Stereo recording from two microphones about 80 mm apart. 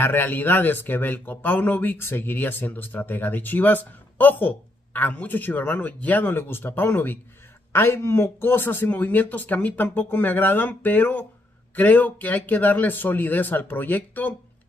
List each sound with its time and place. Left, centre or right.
0.0 s speech: left